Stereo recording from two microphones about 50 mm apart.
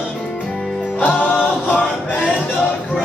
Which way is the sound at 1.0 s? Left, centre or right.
Left.